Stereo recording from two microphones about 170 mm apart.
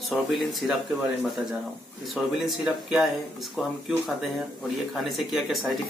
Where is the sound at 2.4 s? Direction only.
Centre (ahead or behind).